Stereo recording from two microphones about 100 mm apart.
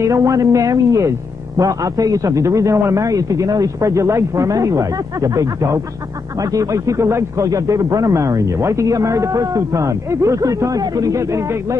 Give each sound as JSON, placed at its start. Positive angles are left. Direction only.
{"t": 0.0, "sound": "speech", "side_deg": -35}